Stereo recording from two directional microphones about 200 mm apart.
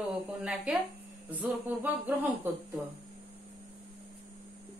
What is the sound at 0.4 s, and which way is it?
Speech, 5° right (ahead or behind).